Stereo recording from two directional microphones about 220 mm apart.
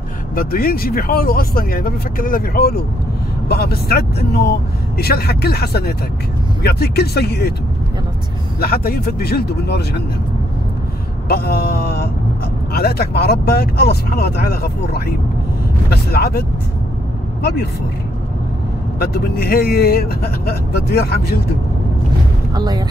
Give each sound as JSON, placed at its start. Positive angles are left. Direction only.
{"t": 0.4, "sound": "speech", "side_deg": 40}
{"t": 8.5, "sound": "speech", "side_deg": 45}
{"t": 11.2, "sound": "speech", "side_deg": 45}
{"t": 18.9, "sound": "speech", "side_deg": 45}
{"t": 22.5, "sound": "speech", "side_deg": -20}